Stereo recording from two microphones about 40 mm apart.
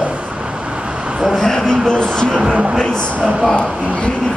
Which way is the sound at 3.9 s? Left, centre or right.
Left.